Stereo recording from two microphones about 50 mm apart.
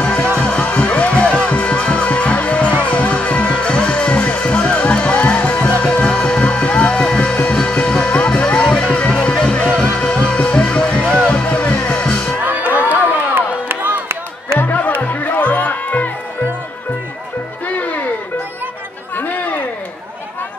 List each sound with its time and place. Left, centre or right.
0.0 s music: left
10.1 s music: left
12.4 s crowd: right
13.0 s music: right
14.6 s music: left
19.1 s a sound: left